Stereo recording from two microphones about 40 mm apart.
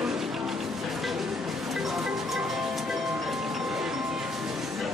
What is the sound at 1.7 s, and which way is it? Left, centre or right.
Music, centre.